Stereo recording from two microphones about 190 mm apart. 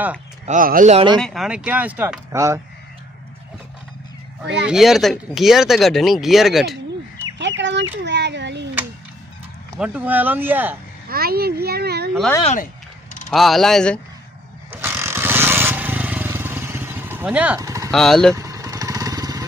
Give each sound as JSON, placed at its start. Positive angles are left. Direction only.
{"t": 0.5, "sound": "speech", "side_deg": -45}
{"t": 0.9, "sound": "speech", "side_deg": -25}
{"t": 1.2, "sound": "speech", "side_deg": 0}
{"t": 4.6, "sound": "speech", "side_deg": 0}
{"t": 7.3, "sound": "speech", "side_deg": -70}
{"t": 9.8, "sound": "speech", "side_deg": -10}
{"t": 11.1, "sound": "a child's voice", "side_deg": -55}
{"t": 13.3, "sound": "speech", "side_deg": 0}
{"t": 14.7, "sound": "vehicle", "side_deg": -10}
{"t": 17.6, "sound": "a sound", "side_deg": -15}
{"t": 17.9, "sound": "speech", "side_deg": 0}
{"t": 18.3, "sound": "motorcycle", "side_deg": -15}